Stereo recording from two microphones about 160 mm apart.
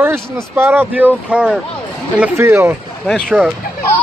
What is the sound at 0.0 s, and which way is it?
Speech, 15° right (ahead or behind).